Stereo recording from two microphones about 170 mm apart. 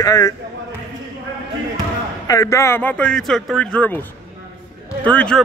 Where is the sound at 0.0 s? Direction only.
20° left (ahead or behind).